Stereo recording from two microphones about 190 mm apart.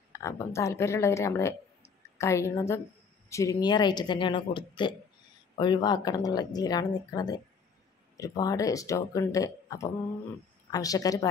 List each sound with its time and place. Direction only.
0.1 s a woman's voice: 15° left (ahead or behind)